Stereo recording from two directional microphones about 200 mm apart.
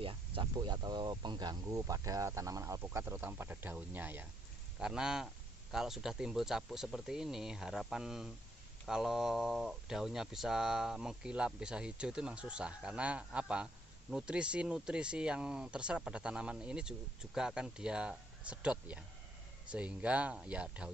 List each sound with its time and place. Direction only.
0.0 s speech: 25° right (ahead or behind); by 20.9 s 5° right (ahead or behind)